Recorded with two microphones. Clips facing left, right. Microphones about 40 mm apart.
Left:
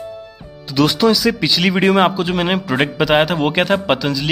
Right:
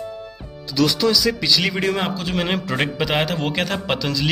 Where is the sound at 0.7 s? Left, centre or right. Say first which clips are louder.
Left 4 dB; left.